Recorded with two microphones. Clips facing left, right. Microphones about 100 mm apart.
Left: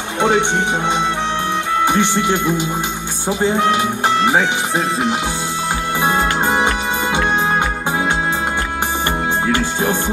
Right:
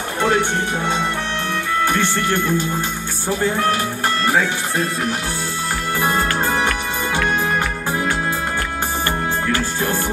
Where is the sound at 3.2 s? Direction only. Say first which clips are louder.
Left 3 dB; 20° left (ahead or behind).